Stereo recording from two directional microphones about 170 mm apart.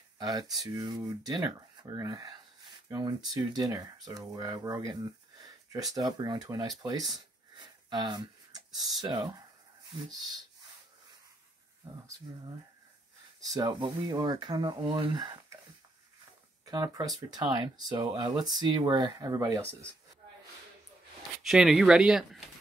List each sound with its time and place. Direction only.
0.2 s speech: 25° right (ahead or behind)
6.8 s a sound: 25° right (ahead or behind)
9.0 s speech: 25° right (ahead or behind)
13.5 s speech: 25° right (ahead or behind)
16.6 s speech: 25° right (ahead or behind)
21.4 s speech: centre (ahead or behind)